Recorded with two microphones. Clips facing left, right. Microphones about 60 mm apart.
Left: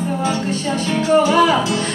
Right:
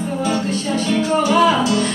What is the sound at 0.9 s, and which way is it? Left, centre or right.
Music, left.